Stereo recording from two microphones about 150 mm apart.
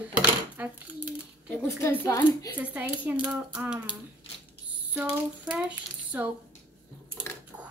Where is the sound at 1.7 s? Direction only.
20° left (ahead or behind).